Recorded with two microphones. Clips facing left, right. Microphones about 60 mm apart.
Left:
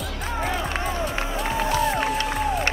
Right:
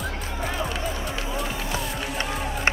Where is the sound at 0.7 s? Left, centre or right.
Left.